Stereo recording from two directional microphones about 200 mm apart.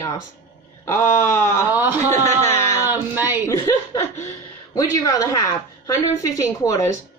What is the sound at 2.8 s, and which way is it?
Speech, 10° right (ahead or behind).